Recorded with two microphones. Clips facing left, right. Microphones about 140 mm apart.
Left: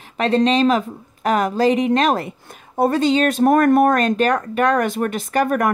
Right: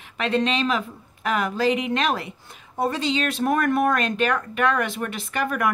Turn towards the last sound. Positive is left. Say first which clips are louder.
# left 7 dB
turn(degrees=45)  # may be behind; listen again after turning